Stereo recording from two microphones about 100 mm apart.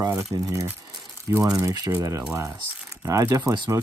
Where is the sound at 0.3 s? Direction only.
35° right (ahead or behind).